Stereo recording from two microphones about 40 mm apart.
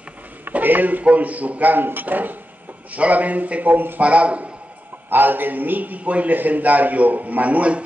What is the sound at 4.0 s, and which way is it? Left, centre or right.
Speech, right.